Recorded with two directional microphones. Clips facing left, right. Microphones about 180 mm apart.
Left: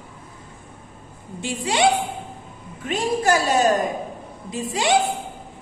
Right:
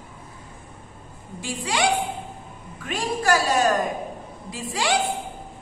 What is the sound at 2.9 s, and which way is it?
A woman's voice, 25° left (ahead or behind).